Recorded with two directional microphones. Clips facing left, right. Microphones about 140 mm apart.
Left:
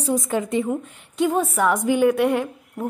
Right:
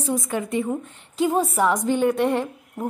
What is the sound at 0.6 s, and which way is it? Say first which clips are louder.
A woman's voice: left 2 dB; 5° left (ahead or behind).